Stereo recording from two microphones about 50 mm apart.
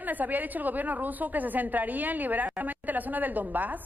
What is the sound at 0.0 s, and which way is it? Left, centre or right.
A woman's voice, right.